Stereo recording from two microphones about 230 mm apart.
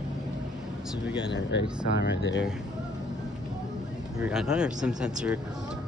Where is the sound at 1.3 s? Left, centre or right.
Left.